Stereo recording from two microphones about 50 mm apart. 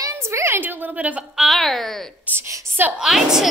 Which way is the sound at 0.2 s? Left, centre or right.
Right.